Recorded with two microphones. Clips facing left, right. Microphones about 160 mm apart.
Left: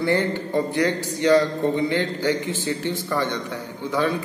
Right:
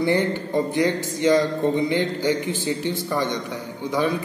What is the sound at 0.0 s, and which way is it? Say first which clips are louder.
A man's voice: right 1 dB; 15° right (ahead or behind).